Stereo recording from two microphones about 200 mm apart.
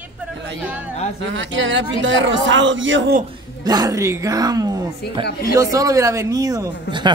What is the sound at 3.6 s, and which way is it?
A woman's voice, 20° right (ahead or behind).